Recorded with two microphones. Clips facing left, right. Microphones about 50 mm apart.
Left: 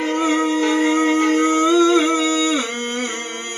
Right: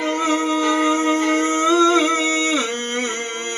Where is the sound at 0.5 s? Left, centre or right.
Left.